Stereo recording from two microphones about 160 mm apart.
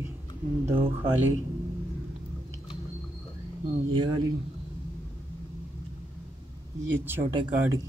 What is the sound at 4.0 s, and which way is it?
Speech, 25° right (ahead or behind).